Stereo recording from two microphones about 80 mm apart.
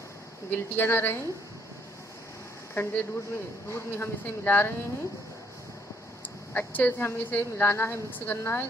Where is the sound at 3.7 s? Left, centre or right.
Left.